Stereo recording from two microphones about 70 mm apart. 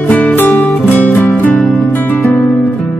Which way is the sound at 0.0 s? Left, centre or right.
Left.